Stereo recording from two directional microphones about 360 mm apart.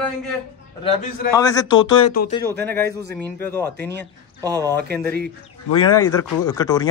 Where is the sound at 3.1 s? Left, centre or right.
Centre.